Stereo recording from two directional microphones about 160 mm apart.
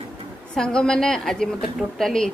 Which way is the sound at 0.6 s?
5° left (ahead or behind).